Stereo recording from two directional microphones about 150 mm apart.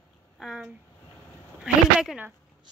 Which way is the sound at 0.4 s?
5° right (ahead or behind).